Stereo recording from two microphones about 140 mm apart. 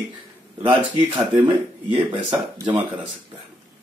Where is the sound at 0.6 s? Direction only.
40° right (ahead or behind).